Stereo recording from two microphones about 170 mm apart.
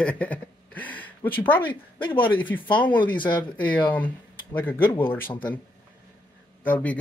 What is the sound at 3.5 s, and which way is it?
Speech, 10° left (ahead or behind).